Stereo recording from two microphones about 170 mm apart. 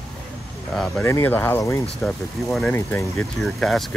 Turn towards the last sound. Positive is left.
turn(degrees=0)  # may be behind; listen again after turning